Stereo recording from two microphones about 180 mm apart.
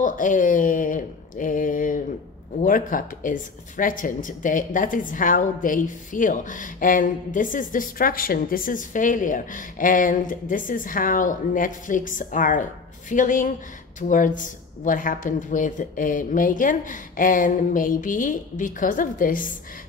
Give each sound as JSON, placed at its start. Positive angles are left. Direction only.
{"t": 0.0, "sound": "speech", "side_deg": 45}